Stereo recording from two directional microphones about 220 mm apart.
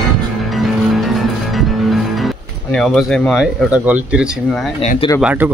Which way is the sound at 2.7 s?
Centre (ahead or behind).